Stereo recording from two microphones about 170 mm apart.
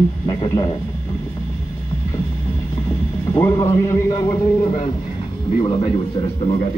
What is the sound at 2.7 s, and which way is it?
Mechanisms, 35° left (ahead or behind).